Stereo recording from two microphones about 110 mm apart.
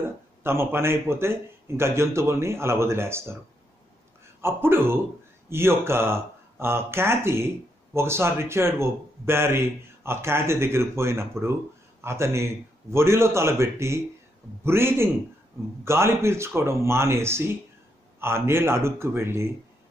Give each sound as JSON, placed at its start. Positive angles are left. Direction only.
{"t": 0.4, "sound": "speech", "side_deg": -20}
{"t": 4.4, "sound": "speech", "side_deg": -20}